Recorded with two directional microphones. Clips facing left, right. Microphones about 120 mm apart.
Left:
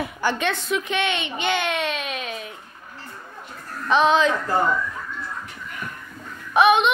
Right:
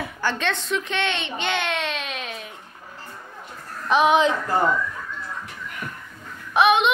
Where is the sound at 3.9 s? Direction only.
10° right (ahead or behind).